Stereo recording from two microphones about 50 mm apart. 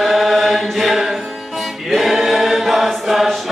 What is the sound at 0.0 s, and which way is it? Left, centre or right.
Chant, centre.